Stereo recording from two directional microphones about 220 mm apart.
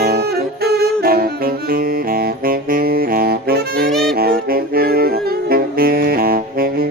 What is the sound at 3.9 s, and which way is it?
Saxophone, centre (ahead or behind).